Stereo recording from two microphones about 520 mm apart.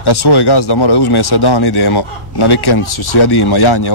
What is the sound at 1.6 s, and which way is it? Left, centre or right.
Speech, left.